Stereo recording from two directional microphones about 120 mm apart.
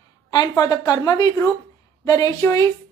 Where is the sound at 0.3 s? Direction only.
35° left (ahead or behind).